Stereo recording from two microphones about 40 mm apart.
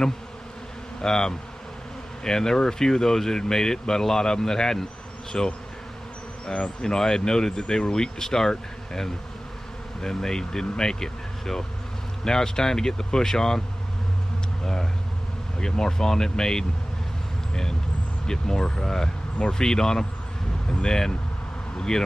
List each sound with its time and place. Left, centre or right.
1.0 s speech: centre
14.6 s speech: centre
18.2 s speech: centre